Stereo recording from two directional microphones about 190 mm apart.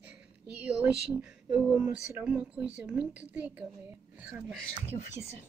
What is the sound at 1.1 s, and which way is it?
A woman's voice, 5° right (ahead or behind).